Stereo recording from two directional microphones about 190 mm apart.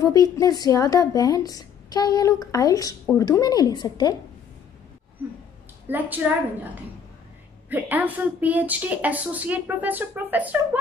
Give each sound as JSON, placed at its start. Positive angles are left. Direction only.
{"t": 0.0, "sound": "a woman's voice", "side_deg": 20}
{"t": 5.9, "sound": "speech", "side_deg": -10}